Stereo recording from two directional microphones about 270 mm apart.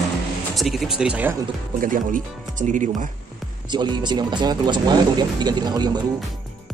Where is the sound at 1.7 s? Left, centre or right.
Right.